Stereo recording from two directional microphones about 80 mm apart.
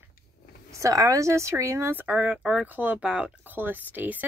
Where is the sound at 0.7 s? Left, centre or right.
Right.